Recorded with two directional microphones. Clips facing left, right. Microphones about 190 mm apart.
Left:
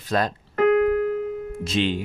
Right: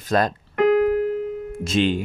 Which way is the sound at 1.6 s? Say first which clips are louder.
Right 4 dB; 45° right (ahead or behind).